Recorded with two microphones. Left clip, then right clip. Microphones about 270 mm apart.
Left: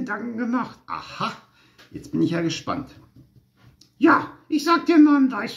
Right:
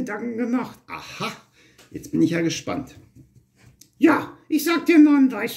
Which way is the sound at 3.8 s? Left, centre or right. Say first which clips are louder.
Left 1 dB; left.